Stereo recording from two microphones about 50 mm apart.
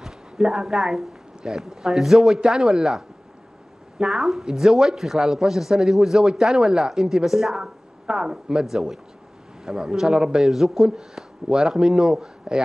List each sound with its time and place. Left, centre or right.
0.0 s a woman's voice: centre
4.0 s a woman's voice: centre
7.6 s a woman's voice: centre